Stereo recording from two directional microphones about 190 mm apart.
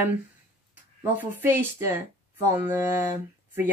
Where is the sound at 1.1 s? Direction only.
10° right (ahead or behind).